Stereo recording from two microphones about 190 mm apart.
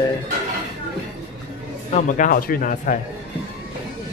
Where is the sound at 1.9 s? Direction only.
45° left (ahead or behind).